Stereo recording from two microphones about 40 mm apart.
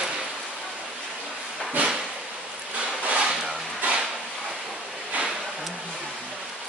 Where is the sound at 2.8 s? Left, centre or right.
Right.